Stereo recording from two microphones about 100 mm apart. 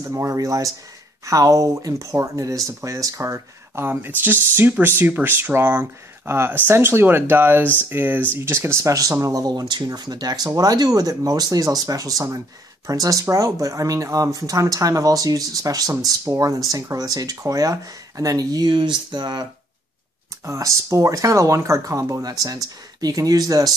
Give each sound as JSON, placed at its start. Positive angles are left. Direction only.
{"t": 0.0, "sound": "speech", "side_deg": -30}
{"t": 20.4, "sound": "speech", "side_deg": -30}